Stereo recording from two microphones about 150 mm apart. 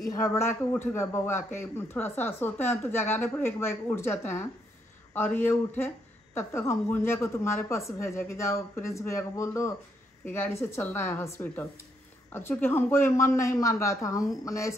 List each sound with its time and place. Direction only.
0.0 s a man's voice: 20° left (ahead or behind)